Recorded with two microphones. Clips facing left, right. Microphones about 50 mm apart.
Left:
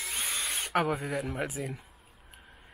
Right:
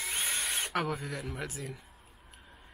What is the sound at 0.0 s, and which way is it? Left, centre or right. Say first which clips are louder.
Tools: even; centre.